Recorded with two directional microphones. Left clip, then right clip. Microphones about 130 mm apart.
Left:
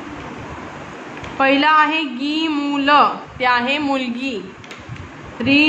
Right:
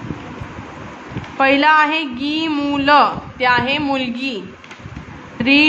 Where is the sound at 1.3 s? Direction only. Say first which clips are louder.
Right 1 dB; 10° right (ahead or behind).